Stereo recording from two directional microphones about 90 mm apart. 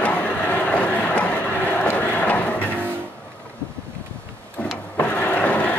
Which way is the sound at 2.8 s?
25° right (ahead or behind).